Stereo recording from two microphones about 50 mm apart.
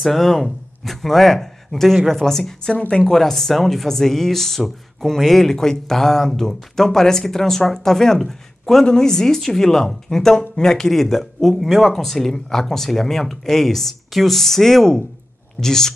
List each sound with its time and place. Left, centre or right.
0.0 s speech: centre
2.7 s a woman's voice: left
3.1 s speech: centre